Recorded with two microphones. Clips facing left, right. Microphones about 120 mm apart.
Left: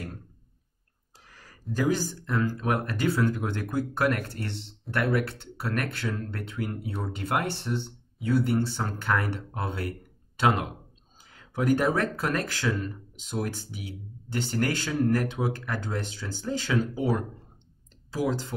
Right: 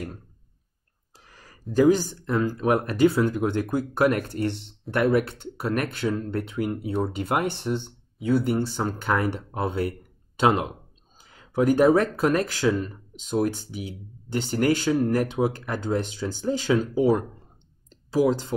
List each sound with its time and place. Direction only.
1.8 s speech: 20° right (ahead or behind)